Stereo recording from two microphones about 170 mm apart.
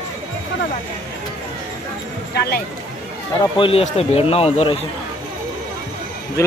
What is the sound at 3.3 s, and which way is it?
Speech, 30° left (ahead or behind).